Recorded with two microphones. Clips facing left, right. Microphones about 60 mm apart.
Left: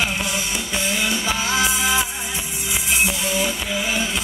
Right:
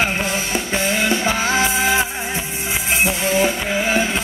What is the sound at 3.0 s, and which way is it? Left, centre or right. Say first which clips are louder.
Music: right 7 dB; right.